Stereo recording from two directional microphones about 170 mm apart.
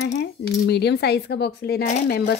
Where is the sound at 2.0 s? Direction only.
65° left (ahead or behind).